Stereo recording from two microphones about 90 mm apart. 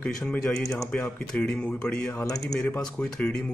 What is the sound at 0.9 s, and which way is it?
Speech, 15° left (ahead or behind).